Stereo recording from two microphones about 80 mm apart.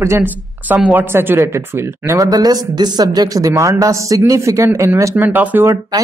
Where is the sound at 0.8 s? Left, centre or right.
Right.